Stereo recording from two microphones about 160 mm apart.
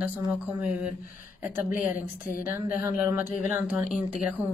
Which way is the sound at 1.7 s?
55° left (ahead or behind).